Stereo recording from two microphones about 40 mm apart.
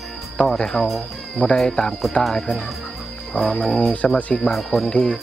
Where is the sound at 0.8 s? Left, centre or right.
Left.